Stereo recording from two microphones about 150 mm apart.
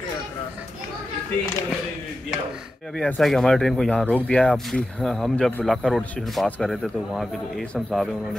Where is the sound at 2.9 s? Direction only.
5° left (ahead or behind).